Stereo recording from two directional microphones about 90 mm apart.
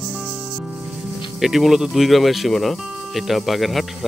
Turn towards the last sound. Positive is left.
turn(degrees=0)  # may be behind; listen again after turning